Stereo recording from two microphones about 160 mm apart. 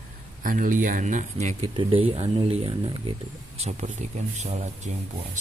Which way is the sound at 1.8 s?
35° right (ahead or behind).